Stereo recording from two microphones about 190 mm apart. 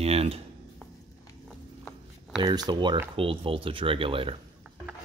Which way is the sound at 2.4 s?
25° right (ahead or behind).